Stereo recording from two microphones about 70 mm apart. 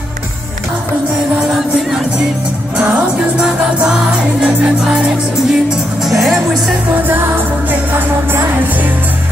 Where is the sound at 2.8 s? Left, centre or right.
Centre.